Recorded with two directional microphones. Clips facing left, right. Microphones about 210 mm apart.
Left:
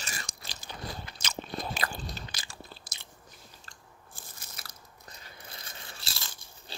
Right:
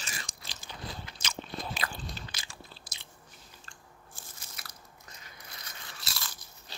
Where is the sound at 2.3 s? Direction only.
40° left (ahead or behind).